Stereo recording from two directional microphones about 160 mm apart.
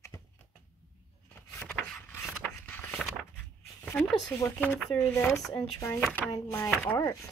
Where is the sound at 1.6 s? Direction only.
15° left (ahead or behind).